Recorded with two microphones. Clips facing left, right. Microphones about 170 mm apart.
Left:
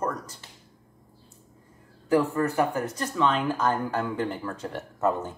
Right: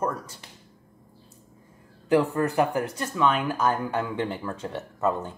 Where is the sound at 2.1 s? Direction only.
20° right (ahead or behind); by 5.3 s centre (ahead or behind).